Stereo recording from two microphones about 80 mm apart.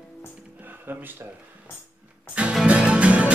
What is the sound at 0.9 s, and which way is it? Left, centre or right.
Speech, right.